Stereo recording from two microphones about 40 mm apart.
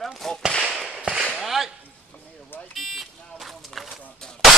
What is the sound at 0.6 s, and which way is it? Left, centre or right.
Whip, centre.